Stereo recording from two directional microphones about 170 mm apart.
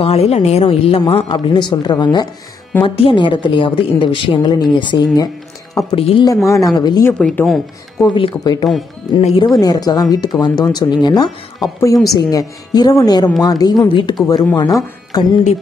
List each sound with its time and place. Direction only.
0.0 s a woman's voice: 35° left (ahead or behind)
6.2 s a woman's voice: 15° left (ahead or behind)
7.1 s speech: 10° left (ahead or behind)
8.0 s a woman's voice: 30° left (ahead or behind)
9.5 s a woman's voice: 20° left (ahead or behind)